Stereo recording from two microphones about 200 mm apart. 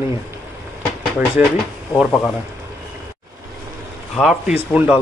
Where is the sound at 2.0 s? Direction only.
5° left (ahead or behind).